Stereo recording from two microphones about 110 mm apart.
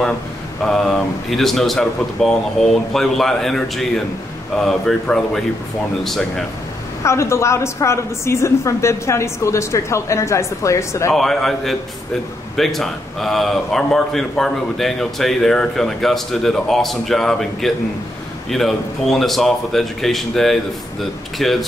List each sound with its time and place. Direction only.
0.7 s a man's voice: 5° left (ahead or behind)
7.0 s a woman's voice: 25° left (ahead or behind)
11.1 s a man's voice: centre (ahead or behind)